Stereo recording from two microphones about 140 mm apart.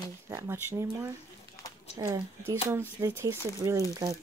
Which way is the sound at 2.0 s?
25° right (ahead or behind).